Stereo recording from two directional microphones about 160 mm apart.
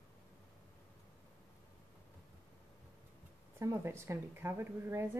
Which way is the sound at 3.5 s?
15° right (ahead or behind).